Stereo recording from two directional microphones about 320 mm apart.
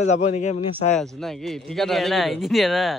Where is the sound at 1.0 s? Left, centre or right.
Centre.